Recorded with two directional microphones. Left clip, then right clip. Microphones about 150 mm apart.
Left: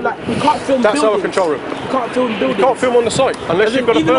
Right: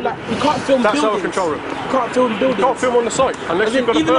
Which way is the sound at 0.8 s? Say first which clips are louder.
Left 3 dB; 15° left (ahead or behind).